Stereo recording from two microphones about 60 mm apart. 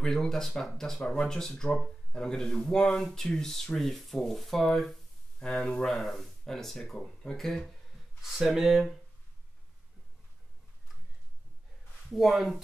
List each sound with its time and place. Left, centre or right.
0.0 s speech: centre
5.4 s speech: centre
5.9 s speech: centre
8.2 s speech: centre
12.1 s speech: centre